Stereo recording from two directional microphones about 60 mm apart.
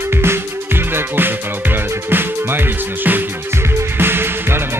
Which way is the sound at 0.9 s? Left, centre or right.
Right.